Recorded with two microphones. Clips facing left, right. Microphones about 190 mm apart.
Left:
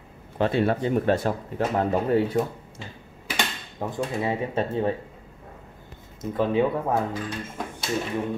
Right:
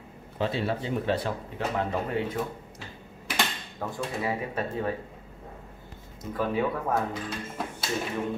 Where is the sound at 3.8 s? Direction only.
25° left (ahead or behind).